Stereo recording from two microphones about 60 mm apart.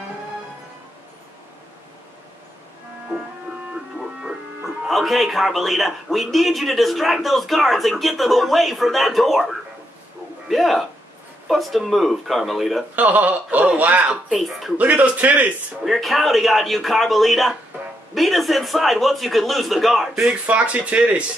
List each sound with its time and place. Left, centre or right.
4.6 s speech: centre
12.9 s speech: right
14.4 s speech: centre
14.8 s speech: right
15.8 s speech: centre
20.4 s speech: right